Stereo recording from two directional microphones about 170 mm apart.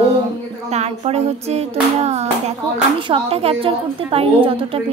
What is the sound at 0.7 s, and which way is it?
A woman's voice, 40° right (ahead or behind).